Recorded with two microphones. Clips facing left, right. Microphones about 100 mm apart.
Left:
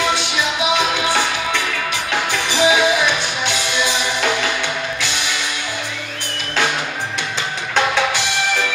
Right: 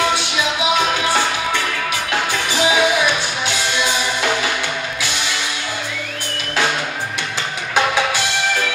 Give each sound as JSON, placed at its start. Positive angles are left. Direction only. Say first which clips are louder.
{"t": 2.5, "sound": "music", "louder": "left 2 dB", "side_deg": 15}